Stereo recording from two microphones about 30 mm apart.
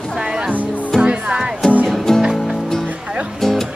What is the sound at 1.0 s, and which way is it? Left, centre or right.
Music, right.